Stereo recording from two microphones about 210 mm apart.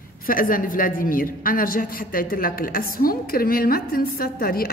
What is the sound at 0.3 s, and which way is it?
A woman's voice, 40° left (ahead or behind).